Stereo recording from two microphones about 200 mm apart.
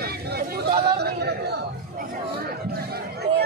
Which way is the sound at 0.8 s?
55° right (ahead or behind).